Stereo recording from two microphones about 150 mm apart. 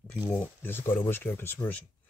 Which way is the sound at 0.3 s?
15° left (ahead or behind).